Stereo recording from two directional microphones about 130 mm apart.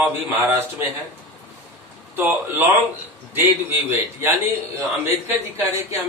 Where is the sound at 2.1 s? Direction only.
15° right (ahead or behind).